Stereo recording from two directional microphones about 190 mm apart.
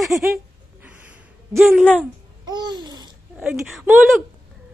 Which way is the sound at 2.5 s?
20° right (ahead or behind).